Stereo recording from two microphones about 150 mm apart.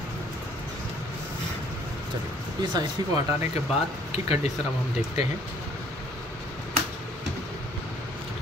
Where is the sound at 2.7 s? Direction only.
25° right (ahead or behind).